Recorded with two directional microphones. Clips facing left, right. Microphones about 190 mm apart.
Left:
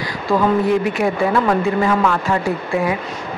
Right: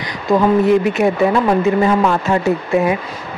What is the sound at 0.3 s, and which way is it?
Speech, 20° right (ahead or behind).